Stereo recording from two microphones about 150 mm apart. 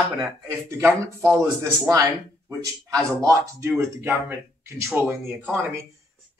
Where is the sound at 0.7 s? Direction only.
15° right (ahead or behind).